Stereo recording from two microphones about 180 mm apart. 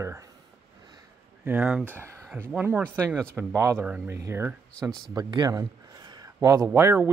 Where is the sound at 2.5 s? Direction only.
10° right (ahead or behind).